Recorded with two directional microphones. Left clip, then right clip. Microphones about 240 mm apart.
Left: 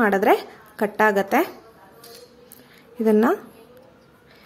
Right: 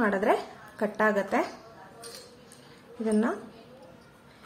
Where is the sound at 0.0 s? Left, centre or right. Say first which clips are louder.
Left 7 dB; left.